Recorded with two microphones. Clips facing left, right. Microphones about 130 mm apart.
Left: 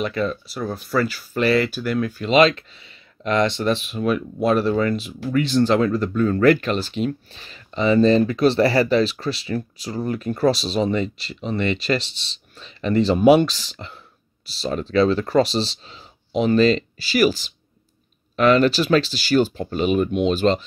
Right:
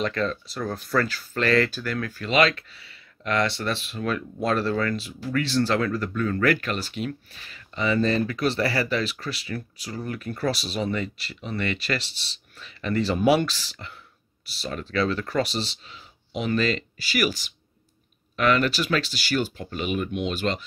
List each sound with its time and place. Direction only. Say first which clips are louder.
0.0 s speech: left 3 dB; 10° left (ahead or behind); by 20.6 s 30° left (ahead or behind)